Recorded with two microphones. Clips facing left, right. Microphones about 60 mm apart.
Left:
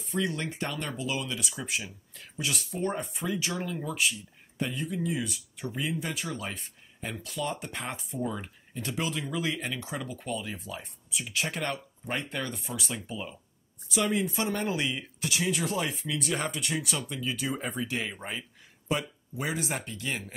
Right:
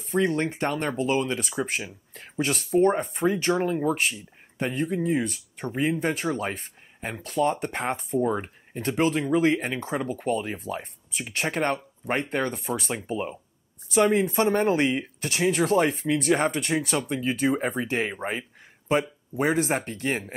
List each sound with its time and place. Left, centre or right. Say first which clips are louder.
0.0 s speech: right 7 dB; right